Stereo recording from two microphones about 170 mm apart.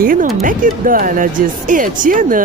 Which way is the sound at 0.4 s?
55° right (ahead or behind).